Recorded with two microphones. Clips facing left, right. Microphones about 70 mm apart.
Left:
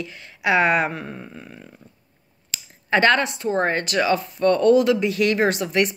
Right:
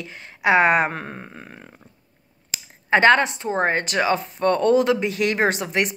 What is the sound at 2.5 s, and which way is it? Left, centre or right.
Speech, right.